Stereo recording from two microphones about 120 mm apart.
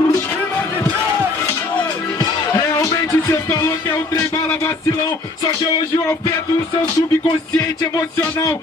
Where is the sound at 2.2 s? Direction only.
30° left (ahead or behind).